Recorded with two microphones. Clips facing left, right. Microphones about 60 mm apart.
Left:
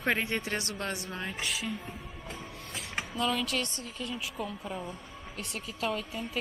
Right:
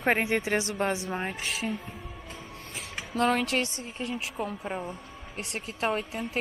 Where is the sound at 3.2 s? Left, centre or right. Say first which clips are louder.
Right 6 dB; right.